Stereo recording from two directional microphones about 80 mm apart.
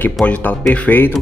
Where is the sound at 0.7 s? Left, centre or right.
Left.